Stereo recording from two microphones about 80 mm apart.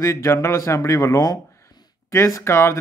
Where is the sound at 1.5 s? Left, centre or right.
Left.